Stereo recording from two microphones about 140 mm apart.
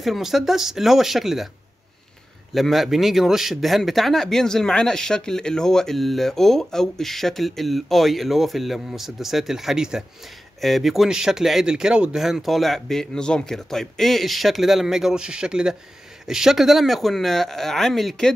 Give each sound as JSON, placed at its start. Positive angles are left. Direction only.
{"t": 0.0, "sound": "speech", "side_deg": 0}
{"t": 2.5, "sound": "speech", "side_deg": 0}